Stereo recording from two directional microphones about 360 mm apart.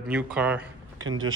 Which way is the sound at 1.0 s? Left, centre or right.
Right.